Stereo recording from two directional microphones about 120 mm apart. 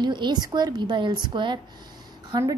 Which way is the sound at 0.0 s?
40° right (ahead or behind).